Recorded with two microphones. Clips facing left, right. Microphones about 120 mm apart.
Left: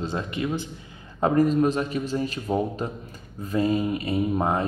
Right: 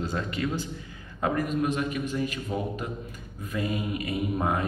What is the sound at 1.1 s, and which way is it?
Speech, 30° left (ahead or behind).